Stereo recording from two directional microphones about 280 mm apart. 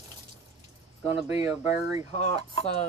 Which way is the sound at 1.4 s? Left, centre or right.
Centre.